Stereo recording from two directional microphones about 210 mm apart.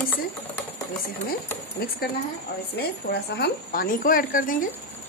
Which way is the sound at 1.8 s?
45° left (ahead or behind).